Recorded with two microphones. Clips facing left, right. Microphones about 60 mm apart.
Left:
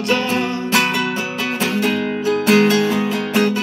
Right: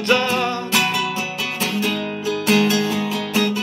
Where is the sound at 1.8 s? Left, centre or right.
Left.